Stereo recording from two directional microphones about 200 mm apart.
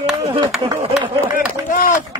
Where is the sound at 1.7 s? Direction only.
40° left (ahead or behind).